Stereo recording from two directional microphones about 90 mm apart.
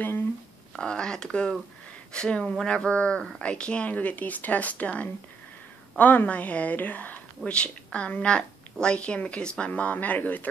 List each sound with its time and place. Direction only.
0.7 s a woman's voice: 10° left (ahead or behind)